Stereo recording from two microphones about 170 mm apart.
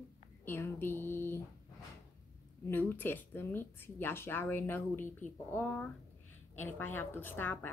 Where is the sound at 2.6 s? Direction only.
10° left (ahead or behind).